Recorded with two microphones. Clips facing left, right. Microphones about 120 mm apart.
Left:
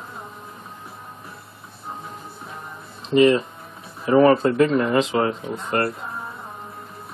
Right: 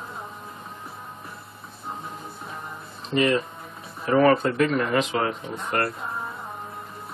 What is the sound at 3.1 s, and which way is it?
Speech, 25° left (ahead or behind).